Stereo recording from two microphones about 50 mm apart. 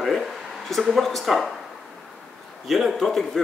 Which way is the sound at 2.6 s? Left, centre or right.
Centre.